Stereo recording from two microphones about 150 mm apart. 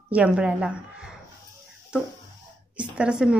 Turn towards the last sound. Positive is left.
turn(degrees=-5)  # may be behind; listen again after turning